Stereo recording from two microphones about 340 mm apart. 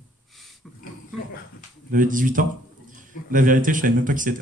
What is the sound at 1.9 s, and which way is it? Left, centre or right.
Speech, right.